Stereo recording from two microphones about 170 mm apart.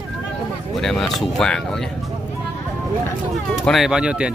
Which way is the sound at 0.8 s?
Centre (ahead or behind).